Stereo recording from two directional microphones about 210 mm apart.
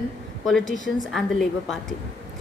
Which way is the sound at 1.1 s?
Centre (ahead or behind).